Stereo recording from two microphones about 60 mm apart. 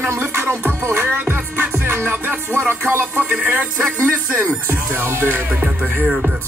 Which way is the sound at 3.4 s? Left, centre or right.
Right.